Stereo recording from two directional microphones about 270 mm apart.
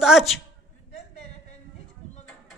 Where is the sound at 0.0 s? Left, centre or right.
Centre.